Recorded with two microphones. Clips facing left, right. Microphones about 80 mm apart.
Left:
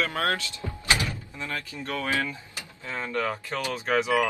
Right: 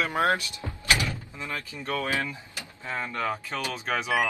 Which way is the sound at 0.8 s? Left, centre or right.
Left.